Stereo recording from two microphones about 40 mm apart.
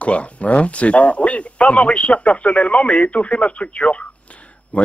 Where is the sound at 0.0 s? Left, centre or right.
Left.